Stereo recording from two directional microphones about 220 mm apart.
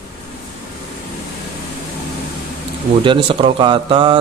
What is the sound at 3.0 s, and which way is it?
Speech, 25° right (ahead or behind).